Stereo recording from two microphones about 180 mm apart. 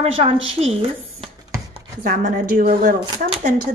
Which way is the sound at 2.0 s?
55° right (ahead or behind).